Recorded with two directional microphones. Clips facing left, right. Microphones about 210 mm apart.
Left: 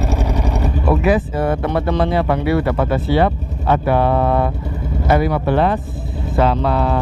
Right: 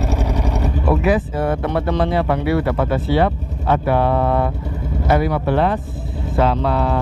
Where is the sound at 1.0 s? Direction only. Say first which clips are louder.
Left 1 dB; 15° left (ahead or behind).